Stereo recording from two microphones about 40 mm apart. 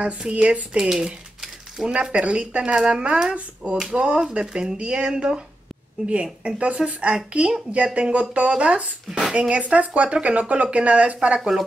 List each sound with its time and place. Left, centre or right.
0.3 s a woman's voice: right
0.7 s a sound: centre
1.9 s a woman's voice: right
6.4 s a woman's voice: right